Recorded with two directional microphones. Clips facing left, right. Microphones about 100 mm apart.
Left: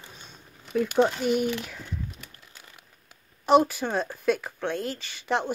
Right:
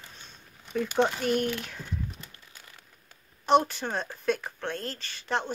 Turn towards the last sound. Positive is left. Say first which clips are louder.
# left 3 dB
turn(degrees=10)  # may be behind; listen again after turning